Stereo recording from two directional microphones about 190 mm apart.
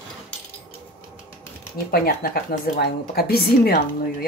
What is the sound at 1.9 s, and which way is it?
Speech, 50° left (ahead or behind).